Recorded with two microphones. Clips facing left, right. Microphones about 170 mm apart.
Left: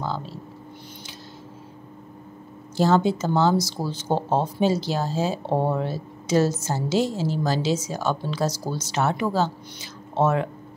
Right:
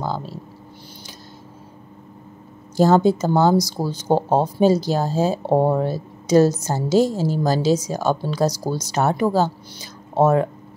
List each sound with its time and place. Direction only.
0.0 s speech: 40° right (ahead or behind)
2.8 s speech: 40° right (ahead or behind)